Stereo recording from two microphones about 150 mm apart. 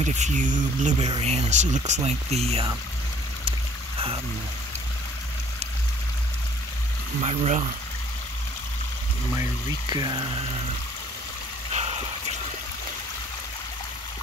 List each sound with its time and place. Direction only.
0.0 s speech: 50° right (ahead or behind)
7.2 s speech: 45° right (ahead or behind)
9.3 s speech: 25° right (ahead or behind)
11.7 s a sound: 45° right (ahead or behind)